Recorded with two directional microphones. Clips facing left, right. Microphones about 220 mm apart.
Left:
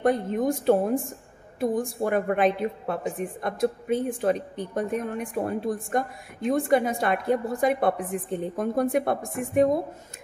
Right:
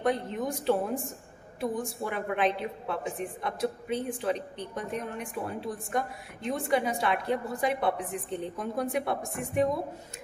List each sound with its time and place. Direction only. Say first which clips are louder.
0.0 s a woman's voice: left 6 dB; 50° left (ahead or behind)